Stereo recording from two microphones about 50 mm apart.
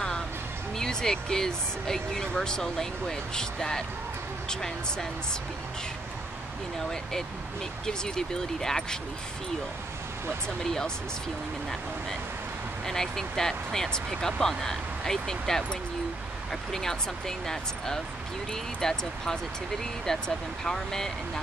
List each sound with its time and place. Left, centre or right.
0.7 s speech: centre
6.9 s speech: centre
10.6 s speech: centre
12.8 s speech: centre
17.5 s speech: centre